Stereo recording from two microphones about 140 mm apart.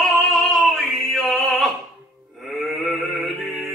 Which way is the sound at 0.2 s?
Centre (ahead or behind).